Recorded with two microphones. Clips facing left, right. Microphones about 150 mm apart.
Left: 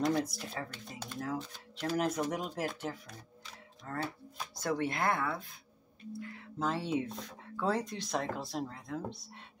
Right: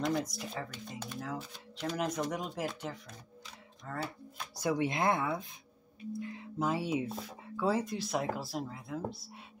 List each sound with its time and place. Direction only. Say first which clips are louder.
0.0 s speech: left 2 dB; centre (ahead or behind)
3.4 s music: even; centre (ahead or behind)
4.6 s speech: right 2 dB; 15° right (ahead or behind)